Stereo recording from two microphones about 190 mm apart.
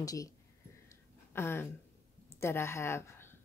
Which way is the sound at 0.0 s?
20° left (ahead or behind).